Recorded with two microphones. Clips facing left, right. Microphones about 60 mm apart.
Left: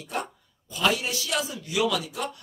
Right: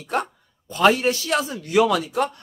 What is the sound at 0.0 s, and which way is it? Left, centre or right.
A man's voice, right.